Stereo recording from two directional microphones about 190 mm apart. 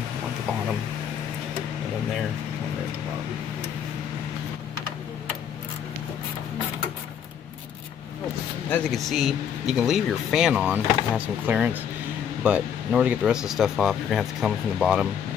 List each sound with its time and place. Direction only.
8.6 s speech: 5° left (ahead or behind)